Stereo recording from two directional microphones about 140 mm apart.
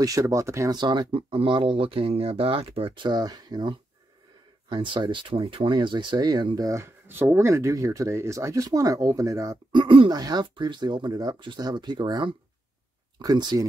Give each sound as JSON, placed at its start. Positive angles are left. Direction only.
{"t": 0.0, "sound": "speech", "side_deg": -25}
{"t": 9.7, "sound": "speech", "side_deg": -35}